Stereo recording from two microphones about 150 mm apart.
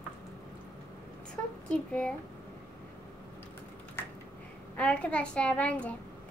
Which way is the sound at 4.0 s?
15° left (ahead or behind).